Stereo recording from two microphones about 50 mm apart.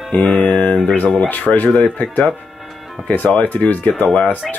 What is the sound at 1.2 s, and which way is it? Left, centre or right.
Speech, left.